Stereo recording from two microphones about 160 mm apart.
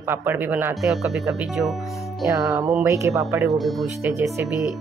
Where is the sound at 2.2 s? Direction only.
20° right (ahead or behind).